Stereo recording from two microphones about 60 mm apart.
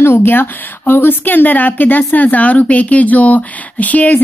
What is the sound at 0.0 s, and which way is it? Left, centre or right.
Speech, left.